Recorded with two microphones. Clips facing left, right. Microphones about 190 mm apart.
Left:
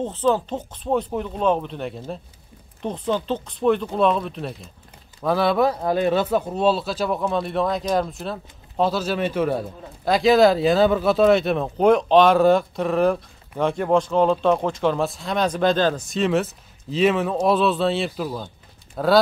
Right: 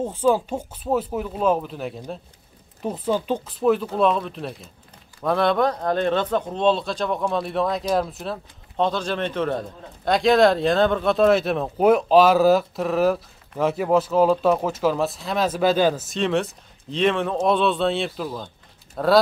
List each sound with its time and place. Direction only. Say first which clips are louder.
0.0 s speech: right 1 dB; 10° right (ahead or behind)